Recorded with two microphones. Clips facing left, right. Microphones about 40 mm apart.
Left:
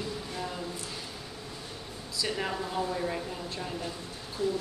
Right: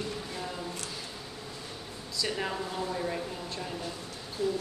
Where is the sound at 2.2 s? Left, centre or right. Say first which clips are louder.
Even; centre.